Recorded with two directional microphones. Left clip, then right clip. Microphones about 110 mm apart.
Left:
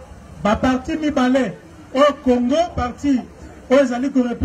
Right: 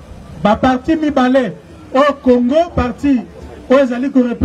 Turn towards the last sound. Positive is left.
turn(degrees=-35)  # may be behind; listen again after turning